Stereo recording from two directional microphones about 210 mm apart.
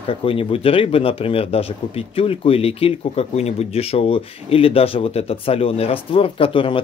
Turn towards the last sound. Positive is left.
turn(degrees=25)  # may be behind; listen again after turning